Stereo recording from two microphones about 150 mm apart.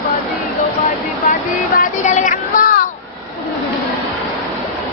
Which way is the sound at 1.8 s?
55° left (ahead or behind).